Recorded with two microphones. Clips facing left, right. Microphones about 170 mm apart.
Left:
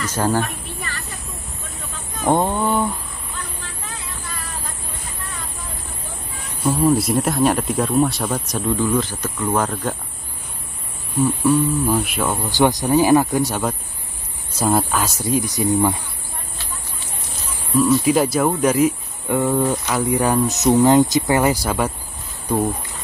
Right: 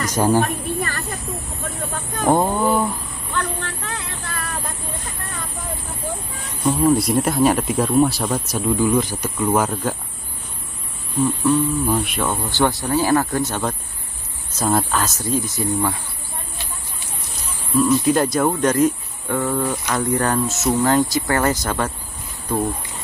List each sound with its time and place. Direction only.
0.1 s speech: 15° right (ahead or behind)
0.4 s a sound: 45° right (ahead or behind)
2.2 s speech: 5° right (ahead or behind)
3.3 s vehicle: 70° right (ahead or behind)
6.6 s speech: 5° left (ahead or behind)
11.1 s speech: 10° left (ahead or behind)
17.7 s speech: 5° left (ahead or behind)